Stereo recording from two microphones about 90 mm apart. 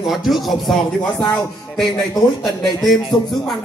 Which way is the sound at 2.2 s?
45° left (ahead or behind).